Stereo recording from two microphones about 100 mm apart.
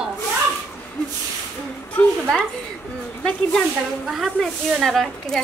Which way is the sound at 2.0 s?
15° left (ahead or behind).